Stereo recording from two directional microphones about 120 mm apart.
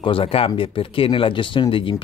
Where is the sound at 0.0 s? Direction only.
50° left (ahead or behind).